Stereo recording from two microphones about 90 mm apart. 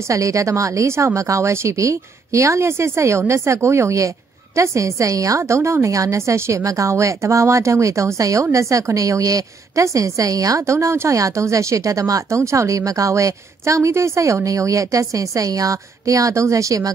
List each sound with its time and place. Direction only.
0.1 s a woman's voice: 35° right (ahead or behind)